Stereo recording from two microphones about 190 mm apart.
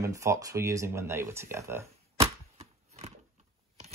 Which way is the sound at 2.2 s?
35° right (ahead or behind).